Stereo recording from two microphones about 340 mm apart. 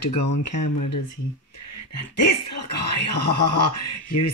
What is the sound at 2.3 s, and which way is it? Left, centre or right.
Speech, left.